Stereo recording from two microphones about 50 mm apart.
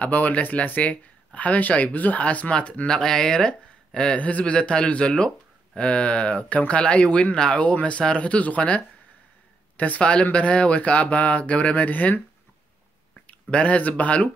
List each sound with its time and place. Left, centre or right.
0.0 s speech: left
2.9 s speech: centre
4.2 s speech: left
7.6 s speech: left